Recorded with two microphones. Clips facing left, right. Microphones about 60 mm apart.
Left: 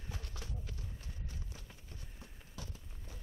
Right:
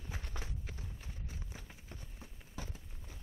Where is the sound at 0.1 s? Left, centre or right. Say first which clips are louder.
Right 1 dB; right.